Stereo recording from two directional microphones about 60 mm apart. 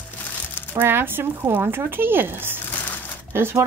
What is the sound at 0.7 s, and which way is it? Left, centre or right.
A woman's voice, right.